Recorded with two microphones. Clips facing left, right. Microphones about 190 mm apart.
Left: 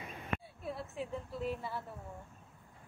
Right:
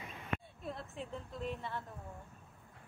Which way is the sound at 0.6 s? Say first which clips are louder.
Left 3 dB; 5° left (ahead or behind).